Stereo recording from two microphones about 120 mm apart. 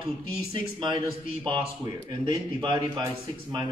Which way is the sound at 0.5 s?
40° right (ahead or behind).